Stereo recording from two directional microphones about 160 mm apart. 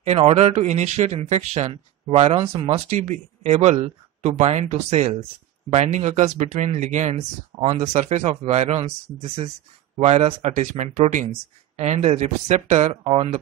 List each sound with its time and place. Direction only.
0.0 s speech: 40° right (ahead or behind)